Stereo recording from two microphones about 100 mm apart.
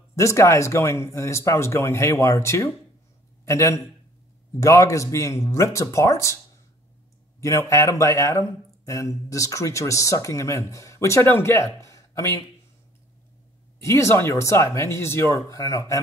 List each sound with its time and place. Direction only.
0.1 s speech: 30° left (ahead or behind)
7.3 s speech: 30° left (ahead or behind)
13.7 s speech: 30° left (ahead or behind)